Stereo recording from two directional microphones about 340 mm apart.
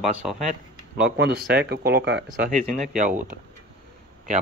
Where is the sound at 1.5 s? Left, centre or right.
Right.